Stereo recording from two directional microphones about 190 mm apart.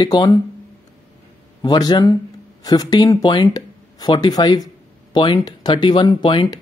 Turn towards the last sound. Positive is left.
turn(degrees=25)  # may be behind; listen again after turning